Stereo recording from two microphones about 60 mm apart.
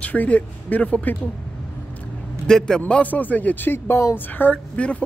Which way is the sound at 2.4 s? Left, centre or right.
Centre.